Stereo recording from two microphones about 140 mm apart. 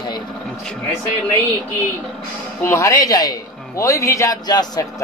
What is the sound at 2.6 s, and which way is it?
A man's voice, 20° left (ahead or behind).